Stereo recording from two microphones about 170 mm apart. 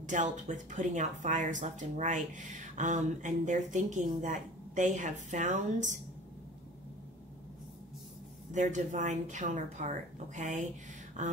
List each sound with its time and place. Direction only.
0.0 s speech: 45° right (ahead or behind)
8.5 s speech: 45° right (ahead or behind)